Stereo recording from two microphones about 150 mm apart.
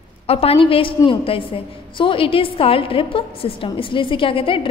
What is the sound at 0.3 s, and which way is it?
A woman's voice, 40° left (ahead or behind).